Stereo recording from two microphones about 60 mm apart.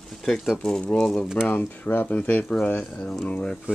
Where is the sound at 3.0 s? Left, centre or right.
Centre.